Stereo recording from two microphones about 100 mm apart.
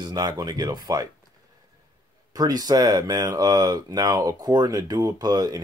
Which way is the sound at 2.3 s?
40° right (ahead or behind).